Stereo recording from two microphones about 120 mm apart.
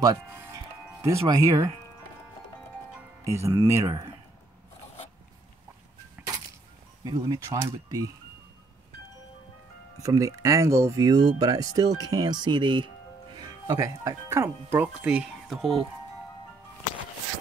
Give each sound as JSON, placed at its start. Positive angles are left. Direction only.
{"t": 0.0, "sound": "speech", "side_deg": -25}
{"t": 3.3, "sound": "speech", "side_deg": -25}
{"t": 7.1, "sound": "speech", "side_deg": -35}
{"t": 10.0, "sound": "speech", "side_deg": -30}
{"t": 13.7, "sound": "speech", "side_deg": -25}